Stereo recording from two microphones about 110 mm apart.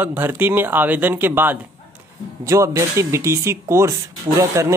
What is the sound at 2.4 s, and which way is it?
Speech, 30° right (ahead or behind).